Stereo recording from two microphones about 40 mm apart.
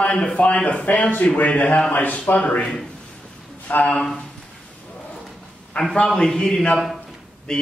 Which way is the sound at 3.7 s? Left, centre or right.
Left.